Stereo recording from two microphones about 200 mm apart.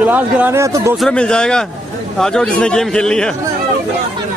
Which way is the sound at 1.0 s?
5° left (ahead or behind).